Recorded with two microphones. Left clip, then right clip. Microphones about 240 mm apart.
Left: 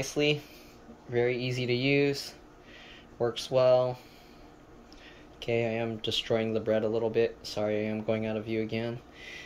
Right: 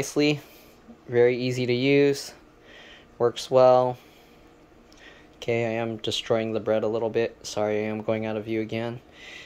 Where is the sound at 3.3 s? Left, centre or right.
Centre.